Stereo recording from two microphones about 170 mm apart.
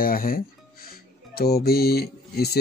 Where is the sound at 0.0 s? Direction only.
60° left (ahead or behind).